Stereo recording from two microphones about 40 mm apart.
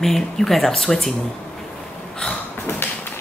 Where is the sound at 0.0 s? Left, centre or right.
Centre.